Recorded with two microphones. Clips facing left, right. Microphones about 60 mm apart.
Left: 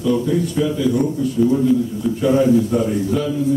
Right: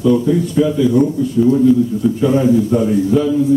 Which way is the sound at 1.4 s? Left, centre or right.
Centre.